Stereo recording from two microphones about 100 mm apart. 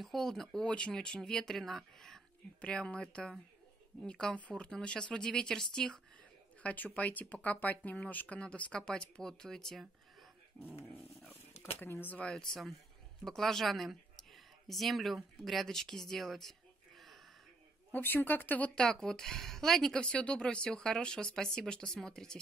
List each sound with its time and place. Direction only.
0.0 s a woman's voice: 5° left (ahead or behind)
11.8 s speech: 20° left (ahead or behind)
13.2 s speech: 5° left (ahead or behind)
17.9 s a woman's voice: 20° left (ahead or behind)